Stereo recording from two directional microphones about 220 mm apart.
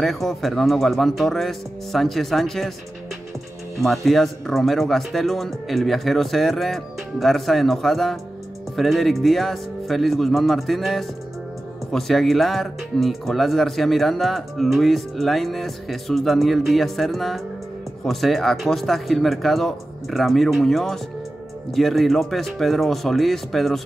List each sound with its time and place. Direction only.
0.0 s speech: centre (ahead or behind)
3.8 s speech: centre (ahead or behind)